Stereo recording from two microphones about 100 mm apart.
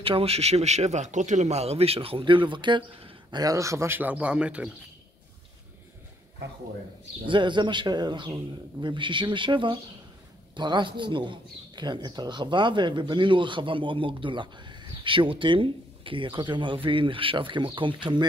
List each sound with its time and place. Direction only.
0.0 s speech: 75° right (ahead or behind); by 4.6 s 10° right (ahead or behind)
7.2 s speech: 50° right (ahead or behind)